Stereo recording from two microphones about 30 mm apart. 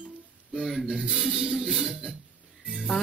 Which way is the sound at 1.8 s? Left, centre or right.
Right.